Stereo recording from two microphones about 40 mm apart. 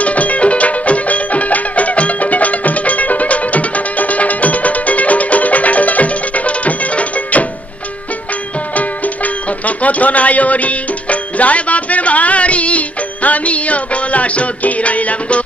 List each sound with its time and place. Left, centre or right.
0.0 s music: left
8.7 s music: left